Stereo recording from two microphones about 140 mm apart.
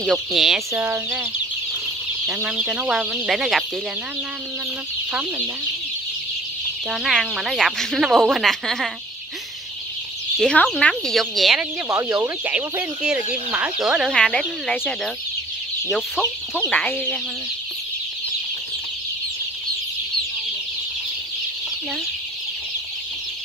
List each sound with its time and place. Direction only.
0.0 s speech: centre (ahead or behind)
0.7 s speech: 15° right (ahead or behind)
2.2 s speech: 5° right (ahead or behind)
6.9 s speech: centre (ahead or behind)
10.4 s speech: 5° left (ahead or behind)
11.9 s speech: 20° right (ahead or behind); by 15.0 s 5° left (ahead or behind)
15.9 s chicken: 10° left (ahead or behind)